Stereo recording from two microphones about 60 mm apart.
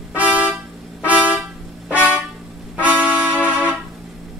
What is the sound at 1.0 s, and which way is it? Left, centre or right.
Vehicle horn, right.